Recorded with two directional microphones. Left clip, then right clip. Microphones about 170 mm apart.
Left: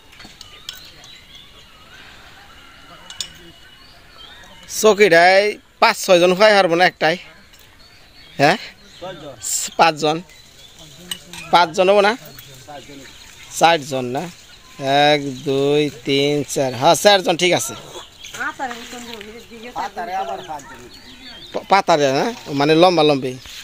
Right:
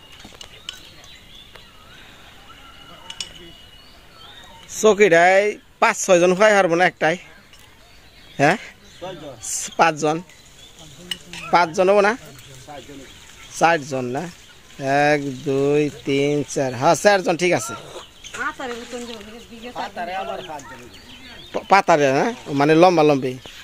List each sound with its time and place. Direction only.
4.6 s speech: 5° right (ahead or behind)
8.4 s a sound: centre (ahead or behind)
9.6 s speech: centre (ahead or behind)
11.2 s speech: centre (ahead or behind)
13.6 s speech: 5° left (ahead or behind)
19.7 s speech: 75° right (ahead or behind)
20.3 s speech: 40° right (ahead or behind)
21.5 s speech: 5° right (ahead or behind)